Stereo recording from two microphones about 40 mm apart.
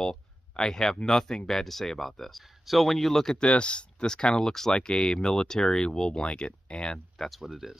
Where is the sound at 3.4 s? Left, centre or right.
Left.